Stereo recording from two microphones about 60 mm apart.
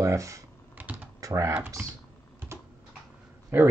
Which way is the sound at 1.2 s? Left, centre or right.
Right.